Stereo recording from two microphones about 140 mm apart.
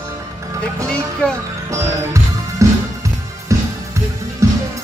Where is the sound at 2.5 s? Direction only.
20° right (ahead or behind).